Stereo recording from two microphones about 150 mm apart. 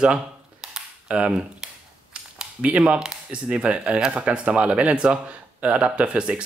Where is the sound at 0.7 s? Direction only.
5° right (ahead or behind).